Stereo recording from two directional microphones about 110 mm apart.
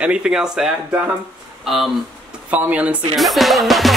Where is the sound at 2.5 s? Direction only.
15° right (ahead or behind).